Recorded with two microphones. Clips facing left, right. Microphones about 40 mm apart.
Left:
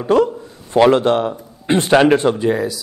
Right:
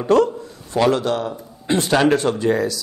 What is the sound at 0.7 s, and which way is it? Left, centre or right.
A man's voice, left.